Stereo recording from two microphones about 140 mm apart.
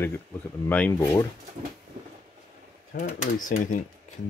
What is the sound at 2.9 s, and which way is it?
Speech, 60° left (ahead or behind).